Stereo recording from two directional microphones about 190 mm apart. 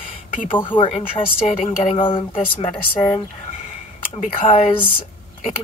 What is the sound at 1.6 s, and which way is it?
A woman's voice, 40° left (ahead or behind).